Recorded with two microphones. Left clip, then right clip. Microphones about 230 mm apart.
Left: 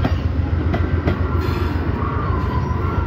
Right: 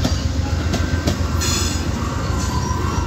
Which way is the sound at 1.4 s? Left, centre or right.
Right.